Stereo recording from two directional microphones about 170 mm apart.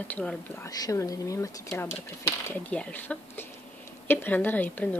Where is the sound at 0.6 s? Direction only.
20° left (ahead or behind).